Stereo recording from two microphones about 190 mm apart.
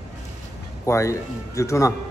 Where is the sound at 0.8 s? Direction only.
15° left (ahead or behind).